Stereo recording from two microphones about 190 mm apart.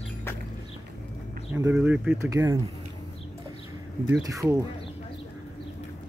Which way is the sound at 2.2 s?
15° right (ahead or behind).